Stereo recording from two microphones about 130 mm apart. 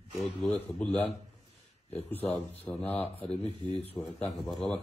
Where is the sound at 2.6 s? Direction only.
15° left (ahead or behind).